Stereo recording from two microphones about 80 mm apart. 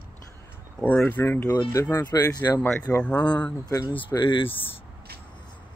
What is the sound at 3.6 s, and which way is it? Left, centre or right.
Speech, left.